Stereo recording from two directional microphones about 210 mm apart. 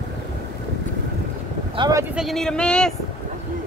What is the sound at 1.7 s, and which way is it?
Vehicle, 20° right (ahead or behind).